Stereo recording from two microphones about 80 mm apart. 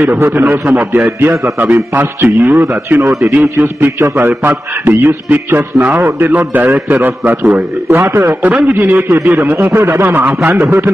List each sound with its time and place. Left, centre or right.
0.1 s a man's voice: right
3.0 s a man's voice: right
3.3 s a man's voice: right